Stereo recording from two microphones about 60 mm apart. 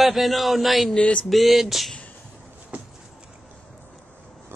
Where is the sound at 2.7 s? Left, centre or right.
Right.